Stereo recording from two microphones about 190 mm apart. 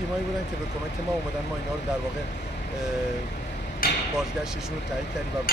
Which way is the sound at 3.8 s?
50° left (ahead or behind).